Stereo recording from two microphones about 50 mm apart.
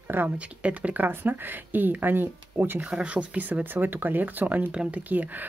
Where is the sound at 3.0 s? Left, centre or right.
Right.